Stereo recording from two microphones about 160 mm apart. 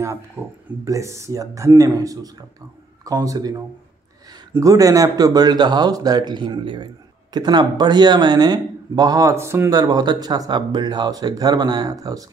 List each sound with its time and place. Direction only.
0.8 s speech: 20° right (ahead or behind)
4.6 s speech: 20° right (ahead or behind)